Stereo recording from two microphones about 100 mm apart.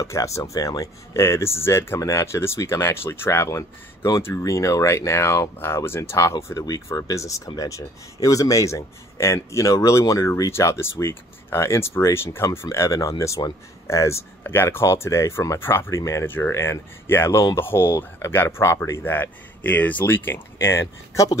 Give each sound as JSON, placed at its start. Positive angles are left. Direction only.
{"t": 0.0, "sound": "speech", "side_deg": 30}